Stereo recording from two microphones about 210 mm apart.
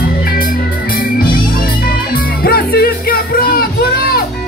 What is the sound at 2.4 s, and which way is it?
Music, 45° left (ahead or behind).